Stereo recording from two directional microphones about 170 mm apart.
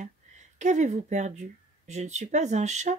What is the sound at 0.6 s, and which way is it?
Speech, 45° right (ahead or behind).